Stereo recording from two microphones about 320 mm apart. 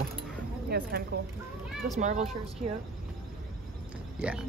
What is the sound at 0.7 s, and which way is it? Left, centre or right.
A woman's voice, right.